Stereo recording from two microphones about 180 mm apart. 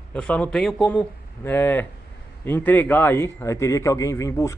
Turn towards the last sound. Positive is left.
turn(degrees=15)  # may be behind; listen again after turning